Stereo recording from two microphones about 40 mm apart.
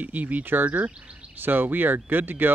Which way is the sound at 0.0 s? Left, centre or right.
Right.